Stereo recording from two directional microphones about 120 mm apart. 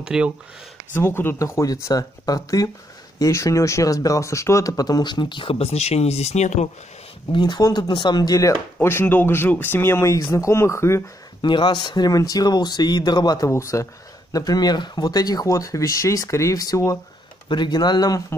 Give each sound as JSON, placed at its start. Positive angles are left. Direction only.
{"t": 0.0, "sound": "speech", "side_deg": -5}
{"t": 0.9, "sound": "speech", "side_deg": 20}
{"t": 7.3, "sound": "speech", "side_deg": 40}
{"t": 8.8, "sound": "speech", "side_deg": 15}
{"t": 11.4, "sound": "speech", "side_deg": 40}
{"t": 17.5, "sound": "speech", "side_deg": 40}